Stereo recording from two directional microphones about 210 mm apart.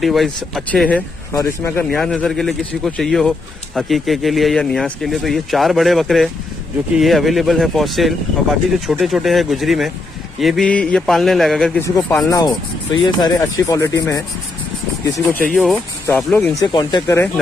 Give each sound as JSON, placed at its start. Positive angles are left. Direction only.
{"t": 0.0, "sound": "speech", "side_deg": 0}
{"t": 11.8, "sound": "speech", "side_deg": 15}
{"t": 15.5, "sound": "speech", "side_deg": 5}
{"t": 16.5, "sound": "speech", "side_deg": 20}